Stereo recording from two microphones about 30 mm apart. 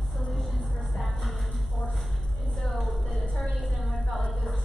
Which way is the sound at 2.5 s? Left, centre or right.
Centre.